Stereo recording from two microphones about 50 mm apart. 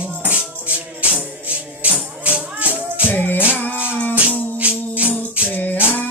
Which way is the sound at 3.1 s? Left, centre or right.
Left.